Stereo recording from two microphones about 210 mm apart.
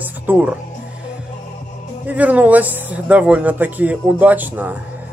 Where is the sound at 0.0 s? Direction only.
10° right (ahead or behind).